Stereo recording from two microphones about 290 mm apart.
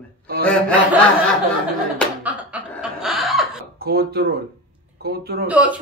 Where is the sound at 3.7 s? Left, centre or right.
Right.